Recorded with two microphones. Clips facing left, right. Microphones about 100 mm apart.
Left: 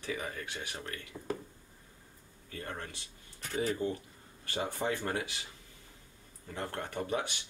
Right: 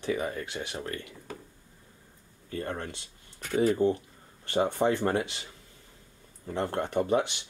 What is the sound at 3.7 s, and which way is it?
Speech, 30° right (ahead or behind).